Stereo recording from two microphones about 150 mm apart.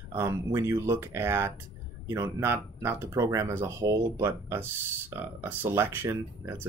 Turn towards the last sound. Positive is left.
turn(degrees=-15)  # may be behind; listen again after turning